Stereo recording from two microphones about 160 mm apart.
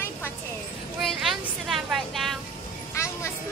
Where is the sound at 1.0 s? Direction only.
Centre (ahead or behind).